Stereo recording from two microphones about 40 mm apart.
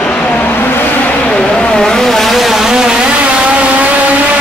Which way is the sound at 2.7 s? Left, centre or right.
Centre.